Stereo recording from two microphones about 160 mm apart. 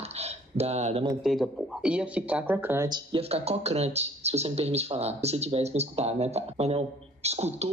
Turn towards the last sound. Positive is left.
turn(degrees=-40)  # may be behind; listen again after turning